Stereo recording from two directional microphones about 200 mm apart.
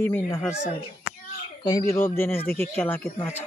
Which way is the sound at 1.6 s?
15° left (ahead or behind).